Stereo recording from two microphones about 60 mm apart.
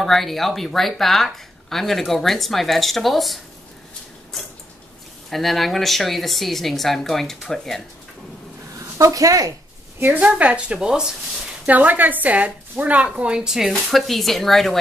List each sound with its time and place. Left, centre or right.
0.0 s speech: centre
5.3 s speech: centre
8.9 s speech: right
9.9 s a woman's voice: right
10.2 s a woman's voice: right
11.6 s a woman's voice: right; by 14.8 s centre